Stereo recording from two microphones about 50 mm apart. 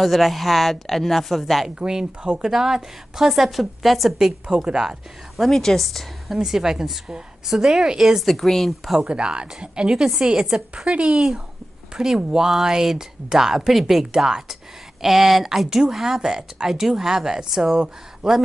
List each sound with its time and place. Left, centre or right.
0.0 s a woman's voice: centre
1.8 s a woman's voice: centre
4.6 s a woman's voice: centre
5.4 s a woman's voice: centre
8.9 s a woman's voice: centre
11.9 s a woman's voice: centre
13.7 s a woman's voice: centre